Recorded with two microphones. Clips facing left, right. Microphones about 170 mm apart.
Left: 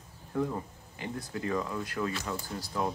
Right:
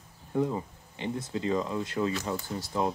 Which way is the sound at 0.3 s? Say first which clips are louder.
Right 3 dB; 20° right (ahead or behind).